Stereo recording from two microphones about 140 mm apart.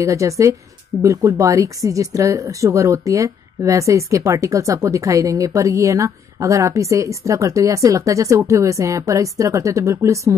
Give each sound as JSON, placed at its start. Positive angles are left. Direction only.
{"t": 0.0, "sound": "speech", "side_deg": -20}